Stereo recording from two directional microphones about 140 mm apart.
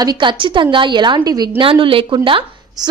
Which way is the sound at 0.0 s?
30° right (ahead or behind).